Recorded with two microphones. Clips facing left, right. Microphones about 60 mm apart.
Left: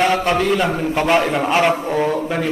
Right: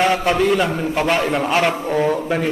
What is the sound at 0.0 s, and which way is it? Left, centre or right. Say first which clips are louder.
A man's voice: even; centre.